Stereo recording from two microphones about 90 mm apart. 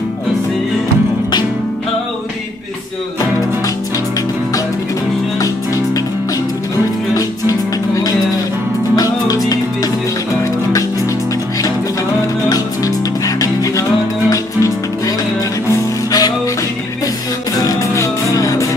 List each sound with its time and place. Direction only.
7.2 s music: 40° left (ahead or behind)
12.4 s music: 40° left (ahead or behind)
17.6 s music: 40° left (ahead or behind)